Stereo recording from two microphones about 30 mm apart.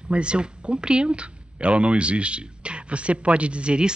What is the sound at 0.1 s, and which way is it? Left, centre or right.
Speech, right.